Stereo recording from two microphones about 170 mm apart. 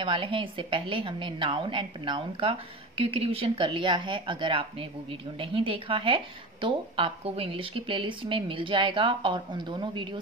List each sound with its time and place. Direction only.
0.0 s a woman's voice: 30° right (ahead or behind)